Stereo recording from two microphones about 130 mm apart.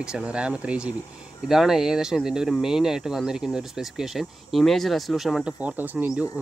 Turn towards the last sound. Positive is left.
turn(degrees=-10)  # may be behind; listen again after turning